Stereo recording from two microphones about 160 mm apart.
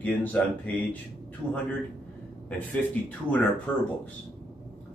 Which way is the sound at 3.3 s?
10° left (ahead or behind).